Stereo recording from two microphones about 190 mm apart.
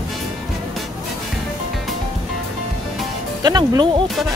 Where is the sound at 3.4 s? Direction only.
20° right (ahead or behind).